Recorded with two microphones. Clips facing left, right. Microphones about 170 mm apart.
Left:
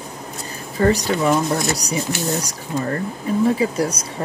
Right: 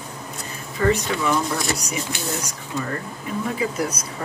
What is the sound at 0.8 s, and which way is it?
Speech, 35° left (ahead or behind).